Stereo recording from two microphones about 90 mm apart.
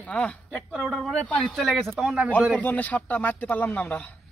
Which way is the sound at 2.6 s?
20° left (ahead or behind).